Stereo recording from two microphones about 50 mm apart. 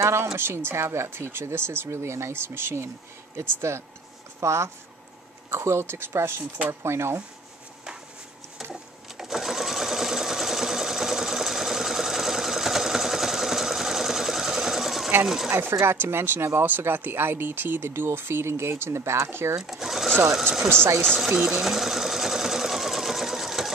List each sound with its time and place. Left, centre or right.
0.0 s speech: right
4.4 s speech: right
5.5 s speech: right
9.2 s sewing machine: centre
15.2 s speech: centre
15.7 s speech: right
16.0 s speech: right
19.2 s speech: right
19.6 s sewing machine: centre
21.3 s sewing machine: centre